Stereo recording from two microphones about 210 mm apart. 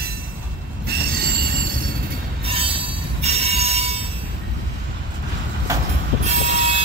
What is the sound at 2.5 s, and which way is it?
Train wheels squealing, 25° right (ahead or behind).